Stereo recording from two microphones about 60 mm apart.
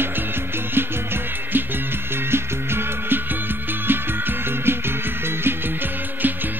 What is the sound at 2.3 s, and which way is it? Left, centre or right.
Music, right.